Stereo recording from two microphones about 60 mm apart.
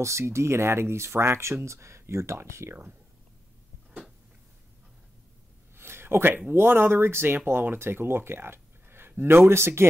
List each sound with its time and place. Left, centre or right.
0.0 s speech: right
2.7 s speech: right
5.8 s a sound: right
6.5 s speech: right